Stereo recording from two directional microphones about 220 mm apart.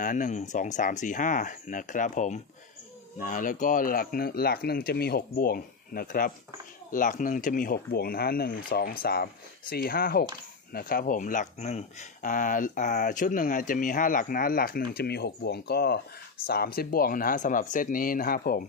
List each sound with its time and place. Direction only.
0.0 s speech: 35° left (ahead or behind)